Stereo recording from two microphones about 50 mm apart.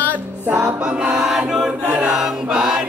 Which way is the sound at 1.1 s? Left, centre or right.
Centre.